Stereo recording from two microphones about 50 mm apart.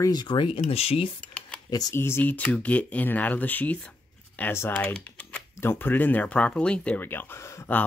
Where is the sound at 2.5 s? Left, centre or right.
Left.